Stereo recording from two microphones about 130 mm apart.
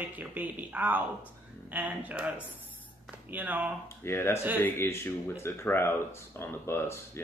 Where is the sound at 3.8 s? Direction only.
20° left (ahead or behind).